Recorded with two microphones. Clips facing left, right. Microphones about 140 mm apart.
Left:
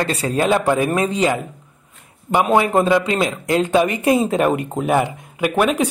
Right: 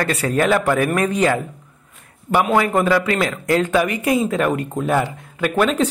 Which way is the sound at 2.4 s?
25° left (ahead or behind).